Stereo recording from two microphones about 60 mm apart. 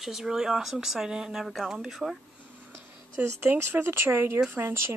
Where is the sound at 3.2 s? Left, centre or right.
Right.